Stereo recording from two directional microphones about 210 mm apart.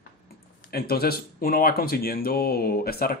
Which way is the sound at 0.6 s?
45° left (ahead or behind).